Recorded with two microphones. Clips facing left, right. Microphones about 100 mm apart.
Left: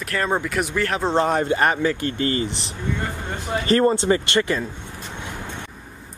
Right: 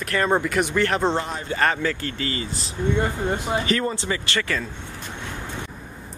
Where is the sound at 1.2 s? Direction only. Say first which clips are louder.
Left 10 dB; 55° left (ahead or behind).